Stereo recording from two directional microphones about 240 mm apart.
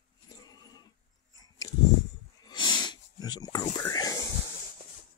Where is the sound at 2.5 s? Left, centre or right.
Centre.